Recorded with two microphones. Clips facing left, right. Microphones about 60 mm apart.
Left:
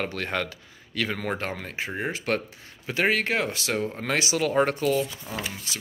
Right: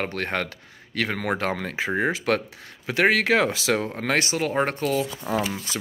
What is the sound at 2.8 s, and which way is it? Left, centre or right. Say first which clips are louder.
Speech: right 4 dB; right.